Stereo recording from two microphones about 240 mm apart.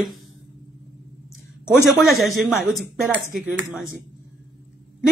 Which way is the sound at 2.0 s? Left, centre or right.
Centre.